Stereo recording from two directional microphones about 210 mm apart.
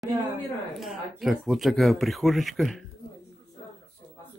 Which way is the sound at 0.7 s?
Centre (ahead or behind).